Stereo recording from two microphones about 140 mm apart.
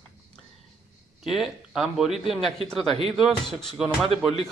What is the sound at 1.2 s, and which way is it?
A man's voice, centre (ahead or behind).